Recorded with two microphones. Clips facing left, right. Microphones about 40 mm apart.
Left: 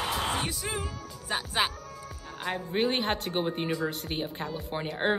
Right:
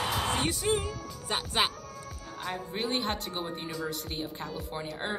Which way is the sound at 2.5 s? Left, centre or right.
Left.